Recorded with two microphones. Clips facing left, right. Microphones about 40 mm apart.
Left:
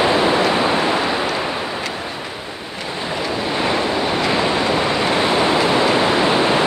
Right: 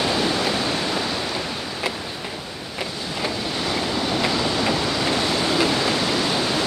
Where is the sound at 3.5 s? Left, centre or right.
Left.